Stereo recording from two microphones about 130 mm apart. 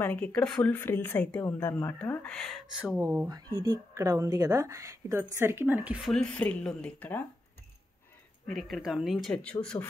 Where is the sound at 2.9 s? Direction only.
20° right (ahead or behind).